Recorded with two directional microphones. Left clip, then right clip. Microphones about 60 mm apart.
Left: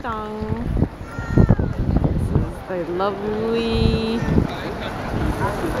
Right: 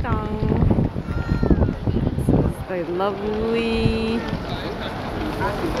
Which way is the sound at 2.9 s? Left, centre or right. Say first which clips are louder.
Left 1 dB; centre.